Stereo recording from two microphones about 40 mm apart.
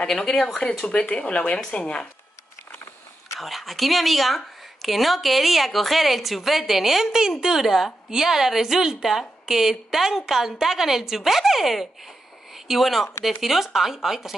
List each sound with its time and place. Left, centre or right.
0.0 s speech: centre
3.3 s a woman's voice: centre